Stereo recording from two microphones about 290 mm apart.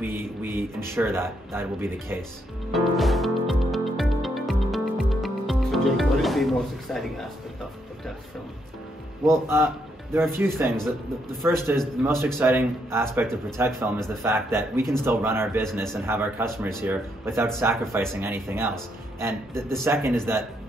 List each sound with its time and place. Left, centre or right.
0.0 s speech: centre
2.7 s music: centre
9.3 s a man's voice: centre